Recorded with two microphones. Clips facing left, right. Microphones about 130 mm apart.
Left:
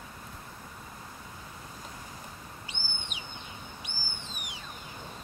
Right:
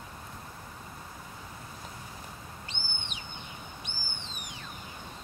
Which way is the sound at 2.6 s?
10° left (ahead or behind).